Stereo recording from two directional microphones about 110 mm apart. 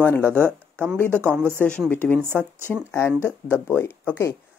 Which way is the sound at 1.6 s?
10° left (ahead or behind).